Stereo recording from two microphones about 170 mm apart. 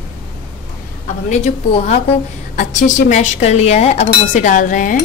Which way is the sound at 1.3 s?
40° left (ahead or behind).